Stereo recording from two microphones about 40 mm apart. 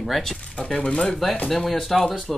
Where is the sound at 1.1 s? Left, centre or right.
Centre.